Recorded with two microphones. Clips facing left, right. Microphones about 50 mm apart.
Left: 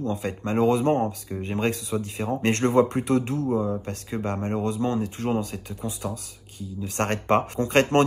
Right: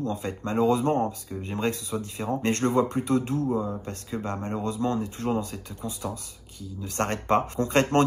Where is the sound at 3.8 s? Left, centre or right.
Left.